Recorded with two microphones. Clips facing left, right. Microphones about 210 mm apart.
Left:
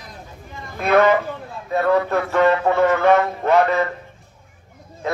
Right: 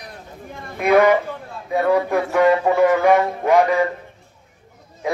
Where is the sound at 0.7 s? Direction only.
15° right (ahead or behind).